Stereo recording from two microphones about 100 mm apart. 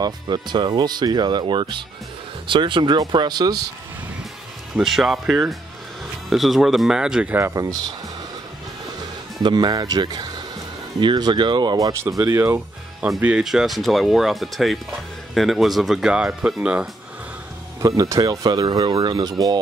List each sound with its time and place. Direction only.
0.0 s speech: 45° right (ahead or behind)
4.7 s speech: 5° right (ahead or behind)
7.5 s speech: 40° right (ahead or behind)
9.4 s speech: 50° right (ahead or behind)
12.2 s speech: 25° right (ahead or behind)
13.2 s speech: 10° right (ahead or behind)
13.5 s speech: centre (ahead or behind)
17.8 s speech: 35° right (ahead or behind)